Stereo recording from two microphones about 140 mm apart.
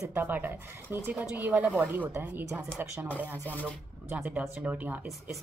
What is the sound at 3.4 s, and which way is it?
Speech, 10° left (ahead or behind).